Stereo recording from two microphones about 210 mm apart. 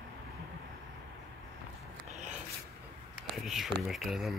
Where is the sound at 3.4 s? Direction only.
Centre (ahead or behind).